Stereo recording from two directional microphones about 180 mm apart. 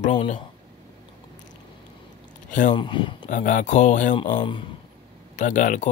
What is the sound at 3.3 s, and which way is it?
Speech, 45° left (ahead or behind).